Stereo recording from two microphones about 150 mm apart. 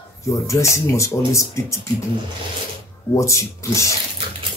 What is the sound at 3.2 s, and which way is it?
Speech, 20° left (ahead or behind).